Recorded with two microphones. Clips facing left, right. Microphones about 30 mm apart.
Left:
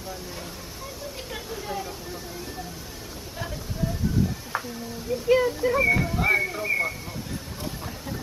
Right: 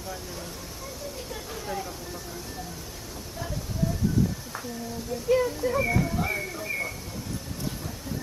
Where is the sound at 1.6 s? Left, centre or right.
Centre.